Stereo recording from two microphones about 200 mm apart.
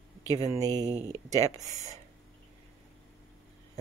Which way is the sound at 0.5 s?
20° right (ahead or behind).